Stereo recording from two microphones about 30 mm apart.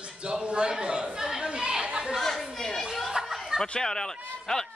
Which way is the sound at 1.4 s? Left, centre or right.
Right.